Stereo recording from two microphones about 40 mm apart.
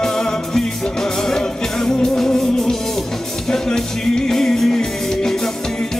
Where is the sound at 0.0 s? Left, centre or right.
Centre.